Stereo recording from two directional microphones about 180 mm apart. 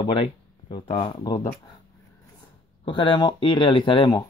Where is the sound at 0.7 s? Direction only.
30° left (ahead or behind).